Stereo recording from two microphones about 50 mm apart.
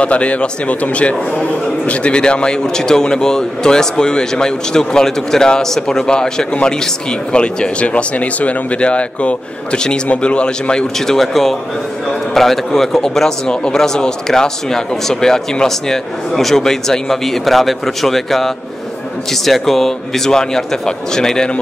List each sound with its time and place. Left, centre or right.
0.0 s speech: left
11.1 s speech: centre